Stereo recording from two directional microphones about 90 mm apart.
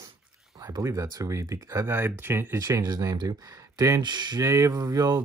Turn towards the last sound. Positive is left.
turn(degrees=-45)  # may be behind; listen again after turning